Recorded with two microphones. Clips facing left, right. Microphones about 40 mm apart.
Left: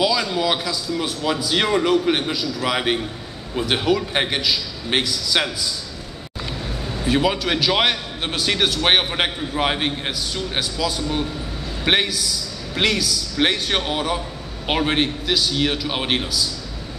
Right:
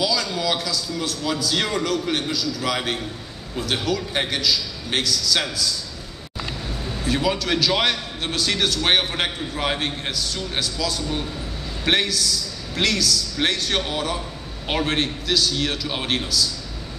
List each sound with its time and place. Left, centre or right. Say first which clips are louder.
0.0 s a man's voice: left 3 dB; left
6.8 s a man's voice: left 4 dB; centre